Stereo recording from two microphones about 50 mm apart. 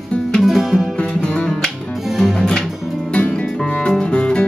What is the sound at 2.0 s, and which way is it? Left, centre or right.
Music, centre.